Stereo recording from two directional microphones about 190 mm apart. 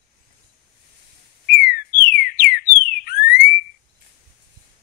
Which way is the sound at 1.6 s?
50° left (ahead or behind).